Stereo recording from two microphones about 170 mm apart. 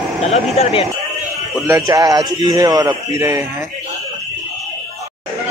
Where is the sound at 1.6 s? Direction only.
20° right (ahead or behind).